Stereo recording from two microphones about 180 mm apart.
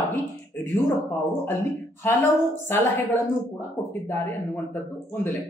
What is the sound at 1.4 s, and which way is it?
Speech, 15° left (ahead or behind).